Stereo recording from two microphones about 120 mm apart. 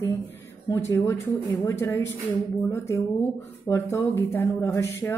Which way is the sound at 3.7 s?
20° left (ahead or behind).